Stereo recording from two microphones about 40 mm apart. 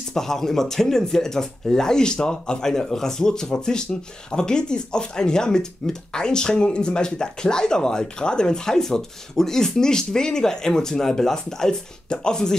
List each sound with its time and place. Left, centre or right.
0.1 s speech: centre